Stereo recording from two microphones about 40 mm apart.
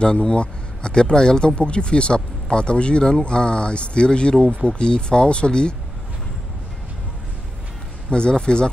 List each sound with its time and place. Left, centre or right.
0.0 s speech: left
8.1 s speech: left